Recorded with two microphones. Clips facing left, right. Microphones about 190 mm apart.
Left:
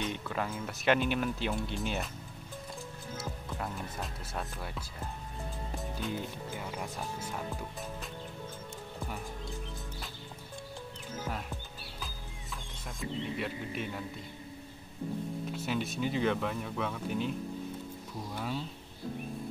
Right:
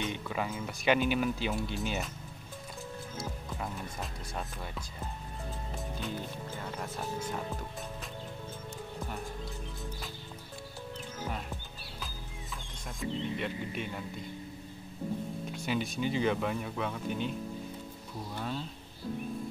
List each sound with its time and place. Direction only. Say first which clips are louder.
0.0 s speech: even; centre (ahead or behind)
3.2 s speech: left 1 dB; centre (ahead or behind)
5.8 s music: left 2 dB; centre (ahead or behind)
6.5 s speech: right 1 dB; 10° left (ahead or behind)
13.0 s speech: right 1 dB; centre (ahead or behind)
15.5 s speech: right 2 dB; centre (ahead or behind)
18.3 s speech: left 1 dB; 5° left (ahead or behind)